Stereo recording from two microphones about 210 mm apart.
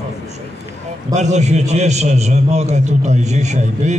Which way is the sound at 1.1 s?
35° right (ahead or behind).